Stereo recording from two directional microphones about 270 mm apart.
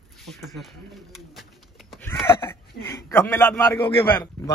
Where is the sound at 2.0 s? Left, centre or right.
Centre.